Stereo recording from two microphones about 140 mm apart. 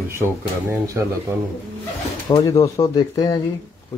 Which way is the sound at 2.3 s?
25° left (ahead or behind).